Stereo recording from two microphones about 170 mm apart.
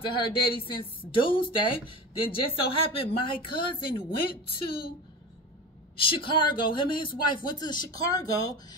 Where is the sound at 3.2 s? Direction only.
30° left (ahead or behind).